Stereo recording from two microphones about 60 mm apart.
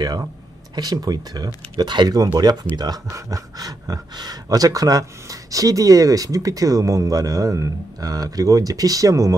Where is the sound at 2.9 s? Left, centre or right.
Right.